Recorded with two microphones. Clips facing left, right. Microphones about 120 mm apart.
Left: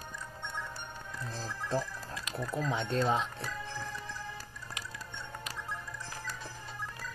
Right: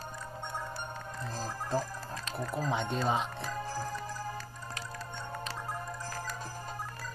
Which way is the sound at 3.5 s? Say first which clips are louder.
Right 4 dB; 40° right (ahead or behind).